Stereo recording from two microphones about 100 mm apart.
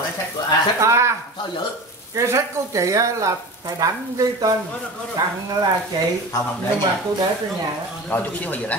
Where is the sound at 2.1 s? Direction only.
30° right (ahead or behind).